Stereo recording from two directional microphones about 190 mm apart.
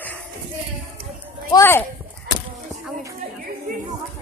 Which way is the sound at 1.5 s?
15° left (ahead or behind).